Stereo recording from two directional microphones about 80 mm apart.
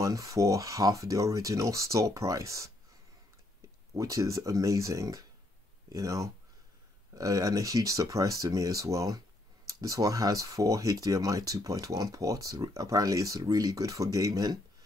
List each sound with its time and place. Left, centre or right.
0.0 s speech: right
3.9 s speech: right